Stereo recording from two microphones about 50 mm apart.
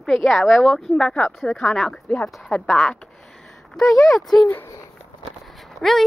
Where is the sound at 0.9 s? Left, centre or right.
Centre.